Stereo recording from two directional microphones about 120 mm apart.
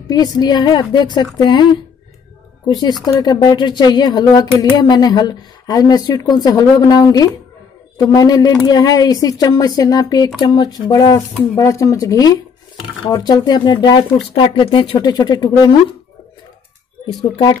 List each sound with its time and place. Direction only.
0.1 s speech: 35° left (ahead or behind)